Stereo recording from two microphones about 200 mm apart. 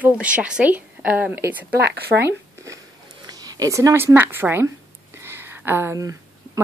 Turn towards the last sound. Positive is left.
turn(degrees=-15)  # may be behind; listen again after turning